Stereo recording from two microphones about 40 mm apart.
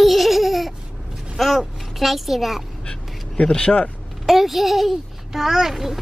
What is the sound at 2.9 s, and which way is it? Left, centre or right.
Quack, left.